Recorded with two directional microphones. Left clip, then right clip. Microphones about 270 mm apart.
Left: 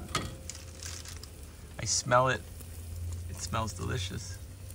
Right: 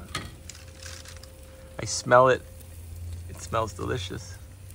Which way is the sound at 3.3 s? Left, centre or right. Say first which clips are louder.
Right 7 dB; centre.